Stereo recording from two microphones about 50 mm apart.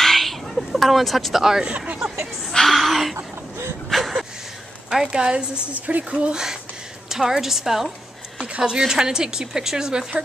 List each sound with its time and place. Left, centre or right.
0.0 s a sound: centre
3.2 s cough: right
3.9 s a sound: centre
4.8 s speech: centre
6.3 s speech: centre
8.5 s speech: centre